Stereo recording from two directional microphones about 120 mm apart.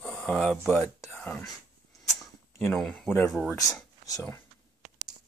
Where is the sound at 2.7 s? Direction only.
5° left (ahead or behind).